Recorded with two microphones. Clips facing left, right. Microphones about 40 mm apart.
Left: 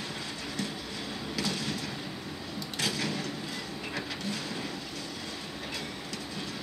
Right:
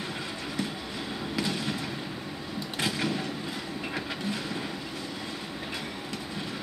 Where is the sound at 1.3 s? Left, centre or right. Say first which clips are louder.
Right 2 dB; centre.